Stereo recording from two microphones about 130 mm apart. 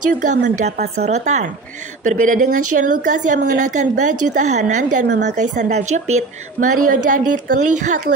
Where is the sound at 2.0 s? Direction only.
80° right.